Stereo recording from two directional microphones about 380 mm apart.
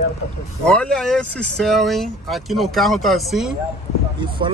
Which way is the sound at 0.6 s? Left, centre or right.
Centre.